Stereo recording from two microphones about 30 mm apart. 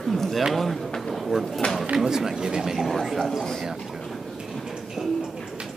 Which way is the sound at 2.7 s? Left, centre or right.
Centre.